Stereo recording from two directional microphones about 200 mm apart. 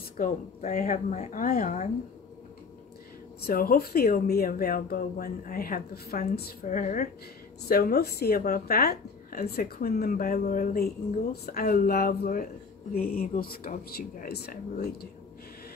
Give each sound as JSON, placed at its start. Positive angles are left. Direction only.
{"t": 0.2, "sound": "speech", "side_deg": 40}
{"t": 3.3, "sound": "speech", "side_deg": 50}
{"t": 7.6, "sound": "speech", "side_deg": 50}